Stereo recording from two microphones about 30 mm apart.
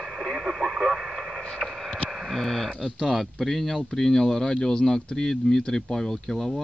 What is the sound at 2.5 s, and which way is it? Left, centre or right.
Speech, centre.